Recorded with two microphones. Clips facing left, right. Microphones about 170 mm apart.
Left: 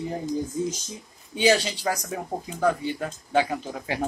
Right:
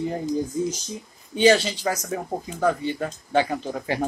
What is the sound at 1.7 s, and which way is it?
Speech, 10° left (ahead or behind).